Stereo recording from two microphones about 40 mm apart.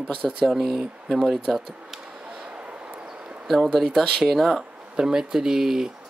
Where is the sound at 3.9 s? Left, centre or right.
Centre.